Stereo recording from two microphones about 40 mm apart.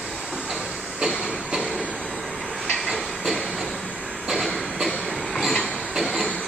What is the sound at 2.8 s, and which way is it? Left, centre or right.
Train, centre.